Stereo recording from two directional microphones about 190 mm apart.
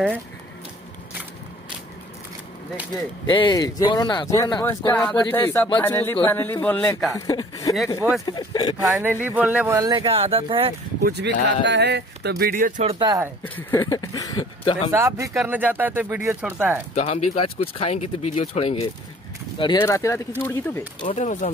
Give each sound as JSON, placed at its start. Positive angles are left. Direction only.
{"t": 3.3, "sound": "speech", "side_deg": 25}
{"t": 8.8, "sound": "speech", "side_deg": -10}
{"t": 11.1, "sound": "speech", "side_deg": -65}
{"t": 13.0, "sound": "speech", "side_deg": -20}
{"t": 13.4, "sound": "speech", "side_deg": 10}
{"t": 14.9, "sound": "speech", "side_deg": -15}
{"t": 16.9, "sound": "speech", "side_deg": 30}
{"t": 19.6, "sound": "speech", "side_deg": 20}
{"t": 21.0, "sound": "speech", "side_deg": 35}